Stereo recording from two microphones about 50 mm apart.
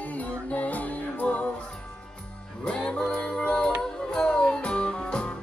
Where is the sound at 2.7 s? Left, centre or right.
Centre.